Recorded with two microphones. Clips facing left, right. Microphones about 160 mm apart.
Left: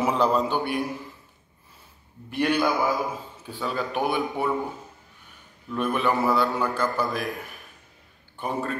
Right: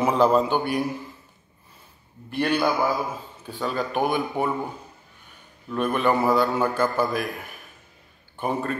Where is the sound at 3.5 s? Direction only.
5° left (ahead or behind).